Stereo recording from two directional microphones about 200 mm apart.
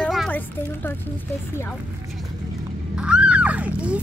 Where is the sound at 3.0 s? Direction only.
5° right (ahead or behind).